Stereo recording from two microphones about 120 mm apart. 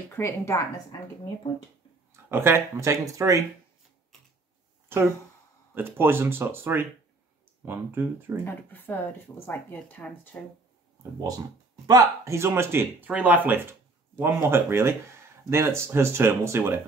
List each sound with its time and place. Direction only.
0.1 s speech: 20° left (ahead or behind)
2.3 s speech: 20° right (ahead or behind)
5.8 s speech: 20° right (ahead or behind)
8.5 s speech: 15° left (ahead or behind)
11.1 s speech: 30° right (ahead or behind)